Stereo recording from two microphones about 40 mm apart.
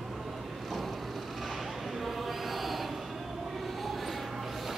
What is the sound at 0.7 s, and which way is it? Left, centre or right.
Vehicle, centre.